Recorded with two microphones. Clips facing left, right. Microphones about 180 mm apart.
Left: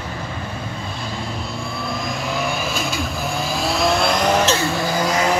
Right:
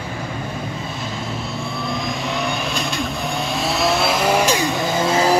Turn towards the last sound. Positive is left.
turn(degrees=-30)  # may be behind; listen again after turning